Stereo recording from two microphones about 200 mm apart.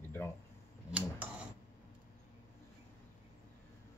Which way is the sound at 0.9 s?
5° right (ahead or behind).